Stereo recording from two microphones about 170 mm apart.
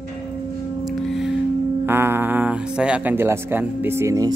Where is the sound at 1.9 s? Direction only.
15° right (ahead or behind).